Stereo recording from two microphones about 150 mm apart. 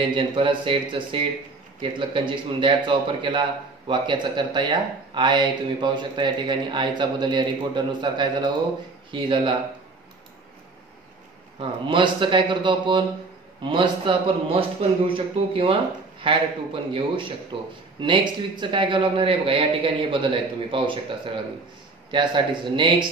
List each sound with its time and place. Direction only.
0.0 s a man's voice: 35° right (ahead or behind)
11.6 s a man's voice: 35° right (ahead or behind)
22.1 s a man's voice: 30° right (ahead or behind)